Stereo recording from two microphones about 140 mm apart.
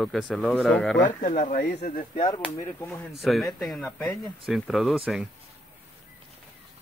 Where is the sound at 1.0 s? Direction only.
65° left (ahead or behind).